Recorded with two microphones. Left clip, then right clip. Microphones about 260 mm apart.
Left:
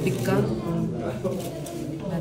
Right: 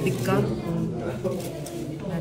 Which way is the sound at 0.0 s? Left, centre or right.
Centre.